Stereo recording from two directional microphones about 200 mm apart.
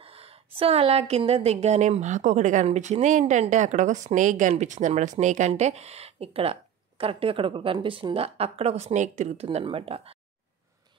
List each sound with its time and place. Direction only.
0.0 s a woman's voice: 30° right (ahead or behind)